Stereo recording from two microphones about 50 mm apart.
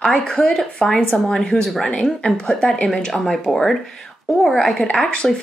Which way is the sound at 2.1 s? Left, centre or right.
Centre.